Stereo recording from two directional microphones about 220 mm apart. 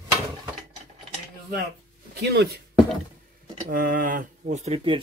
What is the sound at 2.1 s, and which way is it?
Speech, 50° right (ahead or behind).